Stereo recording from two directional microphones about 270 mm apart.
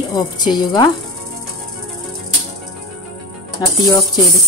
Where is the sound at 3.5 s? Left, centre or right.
Centre.